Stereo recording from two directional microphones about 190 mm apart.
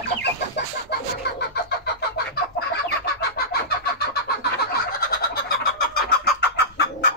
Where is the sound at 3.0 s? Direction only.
55° left (ahead or behind).